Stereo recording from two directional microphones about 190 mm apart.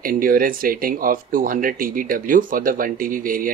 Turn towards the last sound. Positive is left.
turn(degrees=-45)  # may be behind; listen again after turning